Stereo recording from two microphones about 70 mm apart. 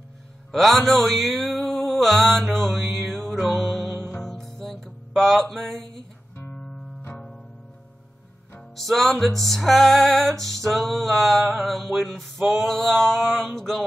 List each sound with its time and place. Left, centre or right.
0.5 s music: centre
7.0 s music: left
8.7 s music: centre